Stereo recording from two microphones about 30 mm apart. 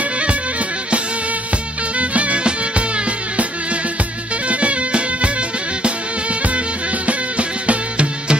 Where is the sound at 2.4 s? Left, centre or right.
Right.